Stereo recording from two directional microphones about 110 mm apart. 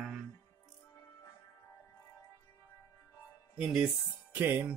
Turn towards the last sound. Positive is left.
turn(degrees=-15)  # may be behind; listen again after turning